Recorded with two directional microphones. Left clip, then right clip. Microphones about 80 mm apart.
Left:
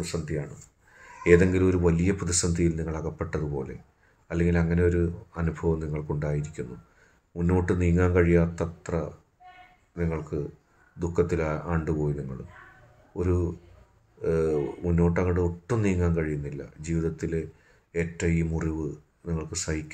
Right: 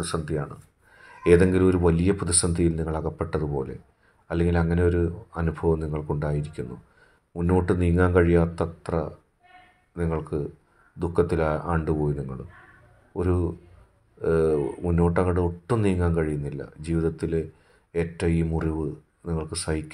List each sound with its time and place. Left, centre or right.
0.1 s speech: right
1.0 s speech: right